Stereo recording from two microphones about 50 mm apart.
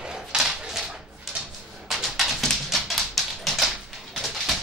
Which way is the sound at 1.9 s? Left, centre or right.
Centre.